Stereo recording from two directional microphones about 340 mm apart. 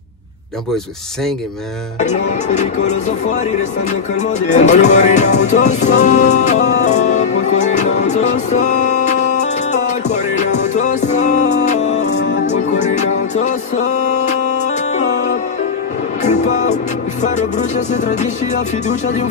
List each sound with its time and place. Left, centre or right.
2.0 s music: centre
16.2 s music: centre